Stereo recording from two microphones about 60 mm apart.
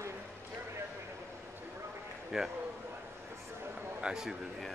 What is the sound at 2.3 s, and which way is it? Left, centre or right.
Speech, centre.